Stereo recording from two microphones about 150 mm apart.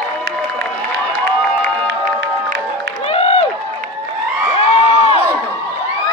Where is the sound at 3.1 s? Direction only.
40° left (ahead or behind).